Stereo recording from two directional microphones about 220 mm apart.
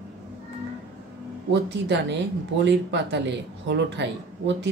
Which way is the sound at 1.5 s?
55° right (ahead or behind).